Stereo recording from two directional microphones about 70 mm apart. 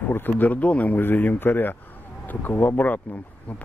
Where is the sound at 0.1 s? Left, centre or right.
Left.